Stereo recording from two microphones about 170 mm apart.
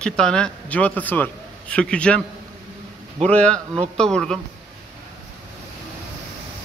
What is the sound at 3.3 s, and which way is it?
A man's voice, 5° left (ahead or behind).